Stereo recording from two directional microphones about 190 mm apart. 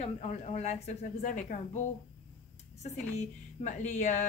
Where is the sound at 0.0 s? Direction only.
35° left (ahead or behind).